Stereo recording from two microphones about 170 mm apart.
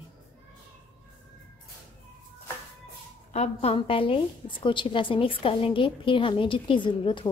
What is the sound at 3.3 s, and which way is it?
A woman's voice, 40° left (ahead or behind).